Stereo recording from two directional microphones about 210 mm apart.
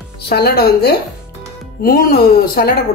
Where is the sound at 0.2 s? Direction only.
50° left (ahead or behind).